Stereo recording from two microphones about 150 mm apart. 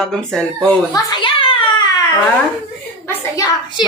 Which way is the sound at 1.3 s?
35° left (ahead or behind).